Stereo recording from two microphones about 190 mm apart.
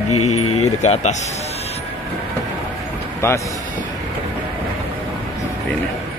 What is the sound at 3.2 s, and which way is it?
Speech, 15° left (ahead or behind).